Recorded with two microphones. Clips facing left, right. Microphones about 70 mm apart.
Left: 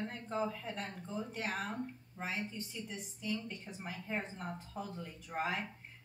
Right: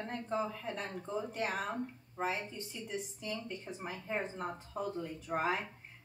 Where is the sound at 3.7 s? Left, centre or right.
Right.